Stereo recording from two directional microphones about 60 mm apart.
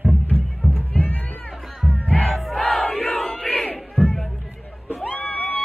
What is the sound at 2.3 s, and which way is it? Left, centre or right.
Crowd, centre.